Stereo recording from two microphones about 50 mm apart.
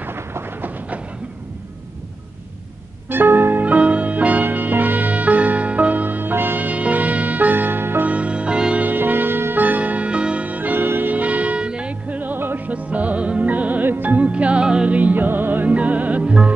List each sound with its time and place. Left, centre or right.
0.0 s train: right
3.1 s music: right
3.6 s music: right
6.7 s music: right
8.1 s music: right
8.8 s music: right
12.2 s music: right
12.6 s music: right
15.0 s music: right
15.7 s music: right